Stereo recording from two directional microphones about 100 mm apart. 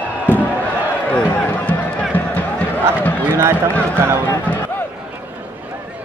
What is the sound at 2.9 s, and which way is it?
Run, 20° left (ahead or behind).